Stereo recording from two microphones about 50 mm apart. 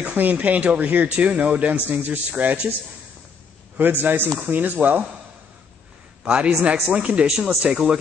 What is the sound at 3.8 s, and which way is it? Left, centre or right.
A man's voice, right.